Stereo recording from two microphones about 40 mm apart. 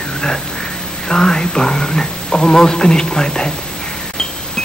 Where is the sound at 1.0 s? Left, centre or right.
Centre.